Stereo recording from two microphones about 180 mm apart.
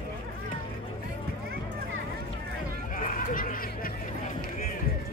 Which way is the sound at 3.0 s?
50° left (ahead or behind).